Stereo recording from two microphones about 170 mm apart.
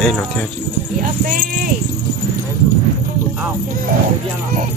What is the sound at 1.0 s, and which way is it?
Speech, 55° right (ahead or behind).